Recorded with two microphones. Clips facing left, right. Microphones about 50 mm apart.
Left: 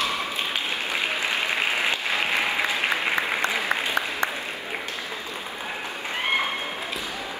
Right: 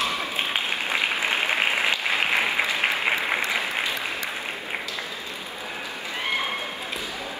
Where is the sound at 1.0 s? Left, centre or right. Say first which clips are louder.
Right 1 dB; right.